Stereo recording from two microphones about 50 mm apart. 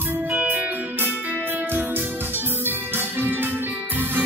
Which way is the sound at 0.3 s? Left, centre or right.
Right.